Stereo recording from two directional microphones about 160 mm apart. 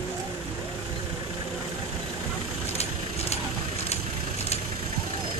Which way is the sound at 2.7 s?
40° left (ahead or behind).